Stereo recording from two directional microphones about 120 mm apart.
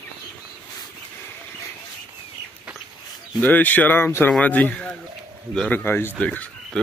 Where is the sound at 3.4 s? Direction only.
15° left (ahead or behind).